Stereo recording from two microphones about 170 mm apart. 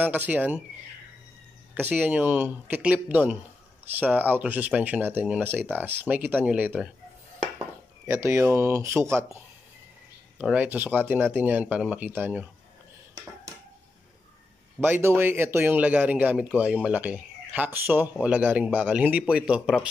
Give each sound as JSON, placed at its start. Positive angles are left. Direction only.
{"t": 0.0, "sound": "speech", "side_deg": -10}
{"t": 1.8, "sound": "speech", "side_deg": -10}
{"t": 8.1, "sound": "speech", "side_deg": -15}
{"t": 10.4, "sound": "speech", "side_deg": -10}
{"t": 14.8, "sound": "speech", "side_deg": -15}